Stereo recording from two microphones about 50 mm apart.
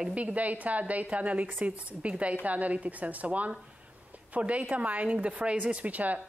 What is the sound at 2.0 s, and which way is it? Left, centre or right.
A woman's voice, right.